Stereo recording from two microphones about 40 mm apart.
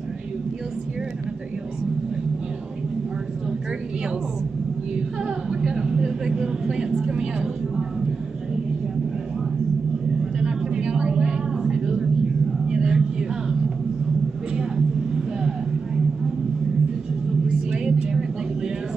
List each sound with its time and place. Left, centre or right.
5.2 s speech: centre
10.4 s vehicle: right
12.6 s a sound: centre
14.6 s vehicle: centre
17.5 s vehicle: centre